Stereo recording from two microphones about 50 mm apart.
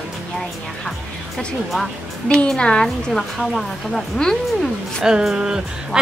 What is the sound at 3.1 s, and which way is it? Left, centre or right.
A woman's voice, centre.